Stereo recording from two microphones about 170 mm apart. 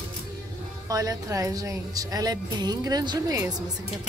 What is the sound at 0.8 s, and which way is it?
A woman's voice, 20° right (ahead or behind).